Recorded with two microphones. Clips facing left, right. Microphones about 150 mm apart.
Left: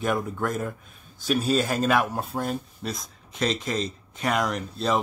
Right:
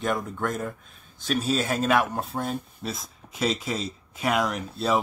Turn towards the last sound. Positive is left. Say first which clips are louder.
# even
turn(degrees=-5)  # may be behind; listen again after turning